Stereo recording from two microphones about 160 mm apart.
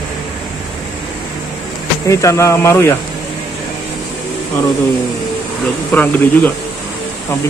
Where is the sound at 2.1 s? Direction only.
20° left (ahead or behind).